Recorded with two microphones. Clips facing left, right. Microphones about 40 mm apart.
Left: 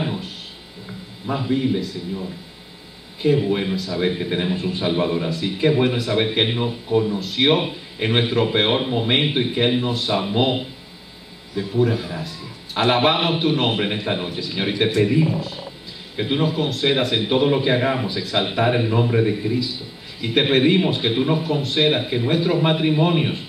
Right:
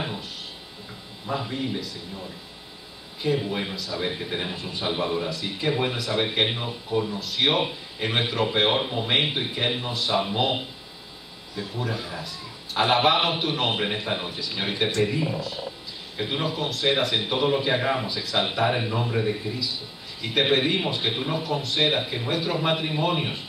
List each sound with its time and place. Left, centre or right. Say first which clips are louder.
1.2 s speech: left 7 dB; centre
3.2 s speech: left 7 dB; centre
3.6 s speech: left 7 dB; centre
4.2 s a man's voice: left 7 dB; centre
11.5 s speech: left 10 dB; centre
16.3 s a man's voice: left 6 dB; centre